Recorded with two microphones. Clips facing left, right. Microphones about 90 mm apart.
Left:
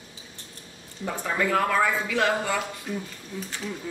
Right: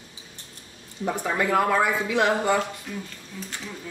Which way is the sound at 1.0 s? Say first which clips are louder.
Right 2 dB; 15° right (ahead or behind).